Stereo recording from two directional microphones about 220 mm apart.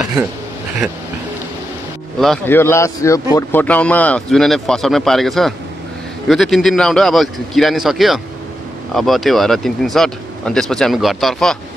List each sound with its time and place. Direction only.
2.1 s speech: centre (ahead or behind)